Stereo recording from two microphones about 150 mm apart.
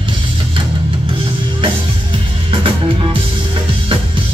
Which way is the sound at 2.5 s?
35° right (ahead or behind).